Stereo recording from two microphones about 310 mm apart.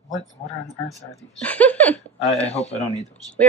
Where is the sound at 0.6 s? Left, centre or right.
Centre.